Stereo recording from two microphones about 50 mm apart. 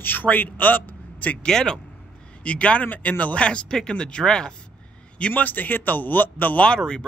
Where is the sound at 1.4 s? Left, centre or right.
Centre; by 3.4 s left.